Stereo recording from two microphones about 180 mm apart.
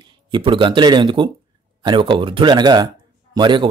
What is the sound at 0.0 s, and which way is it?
Speech, 25° right (ahead or behind).